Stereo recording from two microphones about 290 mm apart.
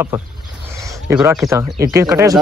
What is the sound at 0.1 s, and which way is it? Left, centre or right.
Speech, centre.